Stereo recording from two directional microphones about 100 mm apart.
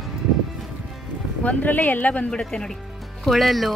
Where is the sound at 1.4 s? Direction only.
15° left (ahead or behind); by 3.7 s centre (ahead or behind).